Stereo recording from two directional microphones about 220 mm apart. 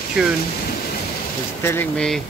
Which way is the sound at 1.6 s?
10° left (ahead or behind).